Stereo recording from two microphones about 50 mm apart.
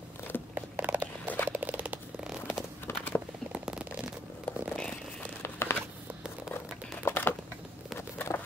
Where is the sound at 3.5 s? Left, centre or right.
Centre.